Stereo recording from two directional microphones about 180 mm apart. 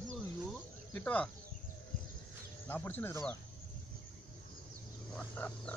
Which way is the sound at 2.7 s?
10° left (ahead or behind).